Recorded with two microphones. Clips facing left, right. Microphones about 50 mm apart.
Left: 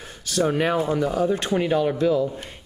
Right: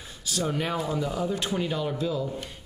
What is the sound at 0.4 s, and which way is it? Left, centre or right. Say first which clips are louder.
Speech: left 7 dB; left.